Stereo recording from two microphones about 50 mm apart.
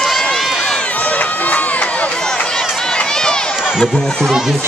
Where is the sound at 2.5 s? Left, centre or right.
Centre.